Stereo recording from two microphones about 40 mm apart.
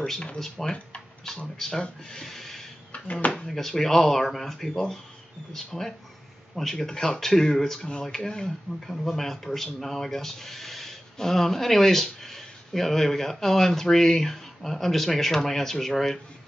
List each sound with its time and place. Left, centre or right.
0.6 s speech: centre
2.9 s speech: left
3.4 s speech: centre